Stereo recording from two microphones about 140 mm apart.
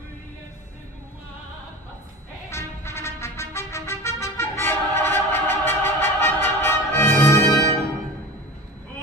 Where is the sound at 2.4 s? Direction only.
20° left (ahead or behind).